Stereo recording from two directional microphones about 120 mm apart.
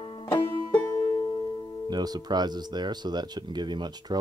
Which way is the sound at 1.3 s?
35° left (ahead or behind).